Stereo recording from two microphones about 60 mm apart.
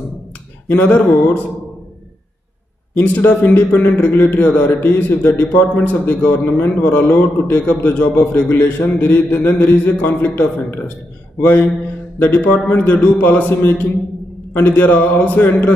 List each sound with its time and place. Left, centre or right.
0.7 s a man's voice: left
2.9 s a man's voice: left
12.2 s a man's voice: left